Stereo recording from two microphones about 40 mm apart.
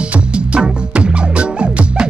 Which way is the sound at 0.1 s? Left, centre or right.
Right.